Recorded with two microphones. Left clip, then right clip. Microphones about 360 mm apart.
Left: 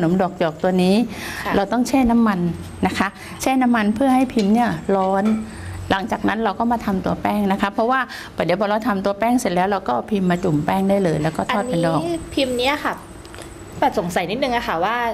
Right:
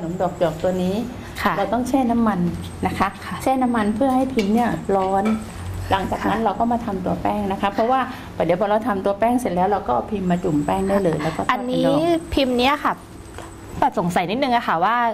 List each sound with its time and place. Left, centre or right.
0.2 s a woman's voice: left
1.5 s a woman's voice: right
1.8 s a woman's voice: left
2.8 s a woman's voice: left
5.9 s a woman's voice: left
10.2 s a woman's voice: left
11.4 s a woman's voice: right
13.7 s a woman's voice: right